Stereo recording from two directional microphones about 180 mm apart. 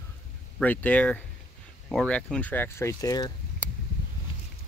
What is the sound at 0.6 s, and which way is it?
Speech, 10° left (ahead or behind).